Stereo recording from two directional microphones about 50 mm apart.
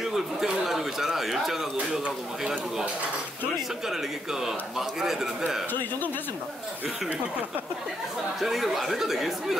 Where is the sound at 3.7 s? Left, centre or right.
Centre.